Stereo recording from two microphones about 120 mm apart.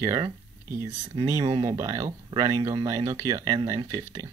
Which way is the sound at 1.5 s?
35° right (ahead or behind).